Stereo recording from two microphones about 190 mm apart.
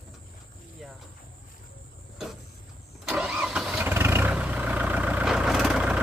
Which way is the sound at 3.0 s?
5° right (ahead or behind).